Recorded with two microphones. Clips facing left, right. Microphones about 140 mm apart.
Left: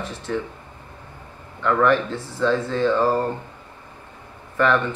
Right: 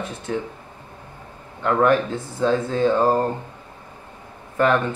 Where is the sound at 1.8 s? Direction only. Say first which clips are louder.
Right 1 dB; 50° right (ahead or behind).